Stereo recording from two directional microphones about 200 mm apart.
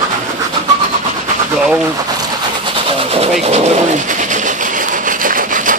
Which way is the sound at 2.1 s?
20° right (ahead or behind).